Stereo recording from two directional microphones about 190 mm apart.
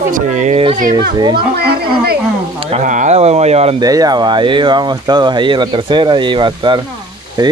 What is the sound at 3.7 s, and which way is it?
Speech, 20° right (ahead or behind).